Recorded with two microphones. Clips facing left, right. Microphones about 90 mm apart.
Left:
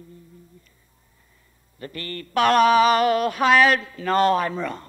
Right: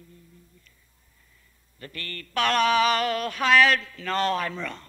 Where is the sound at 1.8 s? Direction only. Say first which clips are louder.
Left 6 dB; 10° left (ahead or behind).